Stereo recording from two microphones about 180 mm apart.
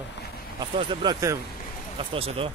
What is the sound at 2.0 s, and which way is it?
Speech, 30° right (ahead or behind).